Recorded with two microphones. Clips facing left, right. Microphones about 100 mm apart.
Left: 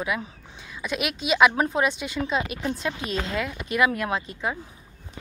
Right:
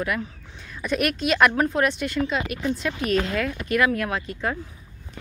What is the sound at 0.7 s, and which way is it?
Speech, 5° left (ahead or behind).